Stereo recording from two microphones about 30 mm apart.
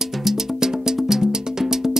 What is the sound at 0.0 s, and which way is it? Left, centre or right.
Music, centre.